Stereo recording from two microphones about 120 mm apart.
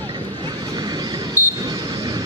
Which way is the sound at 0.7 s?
35° right (ahead or behind).